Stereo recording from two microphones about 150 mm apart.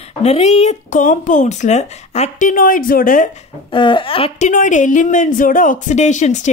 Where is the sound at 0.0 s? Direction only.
45° left (ahead or behind); by 3.4 s 65° left (ahead or behind).